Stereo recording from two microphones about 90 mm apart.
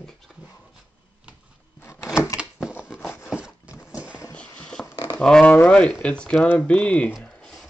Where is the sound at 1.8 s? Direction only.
30° left (ahead or behind).